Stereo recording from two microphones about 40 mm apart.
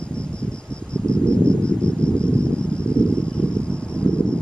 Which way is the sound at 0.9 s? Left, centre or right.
Left.